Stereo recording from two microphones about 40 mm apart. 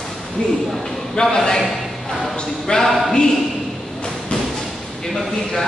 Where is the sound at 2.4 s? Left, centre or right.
Centre.